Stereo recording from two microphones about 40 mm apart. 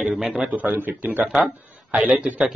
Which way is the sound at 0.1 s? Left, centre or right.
Centre.